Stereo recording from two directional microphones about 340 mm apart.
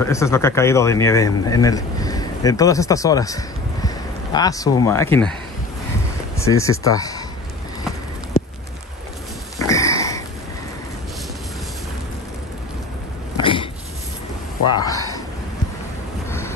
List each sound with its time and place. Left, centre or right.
0.0 s speech: centre
6.3 s speech: centre
9.7 s sniff: centre
13.4 s a sound: centre
14.8 s a sound: centre
16.3 s vehicle: centre